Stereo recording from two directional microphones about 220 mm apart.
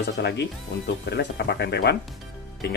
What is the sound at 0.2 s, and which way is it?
Speech, 50° left (ahead or behind).